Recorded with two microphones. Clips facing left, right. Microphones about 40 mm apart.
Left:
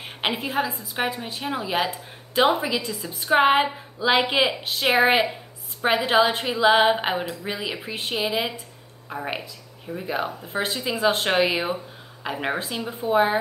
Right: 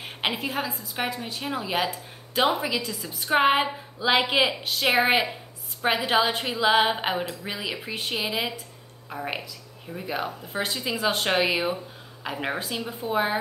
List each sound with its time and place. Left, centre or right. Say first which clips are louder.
0.0 s a woman's voice: left 1 dB; centre
0.9 s speech: left 3 dB; centre
10.2 s speech: left 2 dB; centre